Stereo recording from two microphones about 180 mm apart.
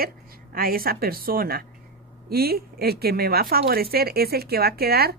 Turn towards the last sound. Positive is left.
turn(degrees=-60)  # may be behind; listen again after turning